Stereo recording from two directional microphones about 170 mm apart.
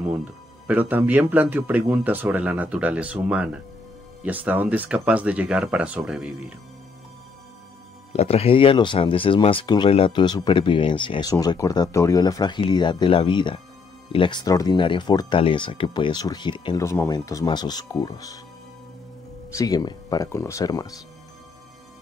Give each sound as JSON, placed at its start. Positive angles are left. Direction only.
{"t": 0.0, "sound": "speech", "side_deg": -10}
{"t": 8.1, "sound": "speech", "side_deg": 35}
{"t": 16.8, "sound": "speech", "side_deg": 15}
{"t": 19.5, "sound": "speech", "side_deg": 20}